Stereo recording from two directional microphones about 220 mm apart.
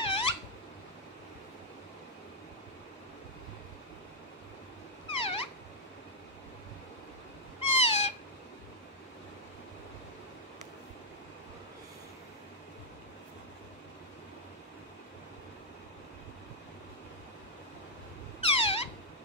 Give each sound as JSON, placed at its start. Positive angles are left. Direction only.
{"t": 0.0, "sound": "squeak", "side_deg": 25}
{"t": 5.1, "sound": "cat", "side_deg": 25}
{"t": 7.6, "sound": "owl", "side_deg": 30}
{"t": 18.4, "sound": "squeak", "side_deg": 25}